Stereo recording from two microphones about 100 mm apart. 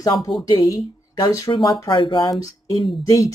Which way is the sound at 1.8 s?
50° left (ahead or behind).